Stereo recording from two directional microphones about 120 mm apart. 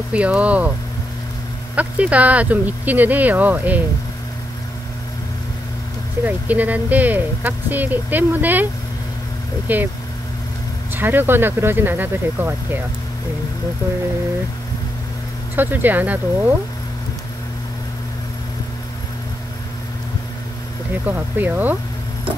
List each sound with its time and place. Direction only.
0.1 s speech: 10° right (ahead or behind)
1.8 s speech: 10° right (ahead or behind)
6.2 s speech: 15° right (ahead or behind)
9.7 s speech: 15° right (ahead or behind)
10.9 s speech: 15° right (ahead or behind)
15.5 s speech: 15° right (ahead or behind)
21.1 s speech: 15° right (ahead or behind)